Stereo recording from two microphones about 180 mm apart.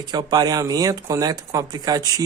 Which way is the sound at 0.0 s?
25° right (ahead or behind).